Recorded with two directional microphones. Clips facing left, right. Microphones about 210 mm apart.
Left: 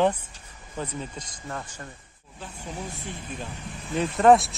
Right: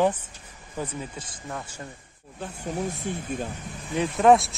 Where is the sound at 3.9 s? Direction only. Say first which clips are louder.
Even; 10° right (ahead or behind).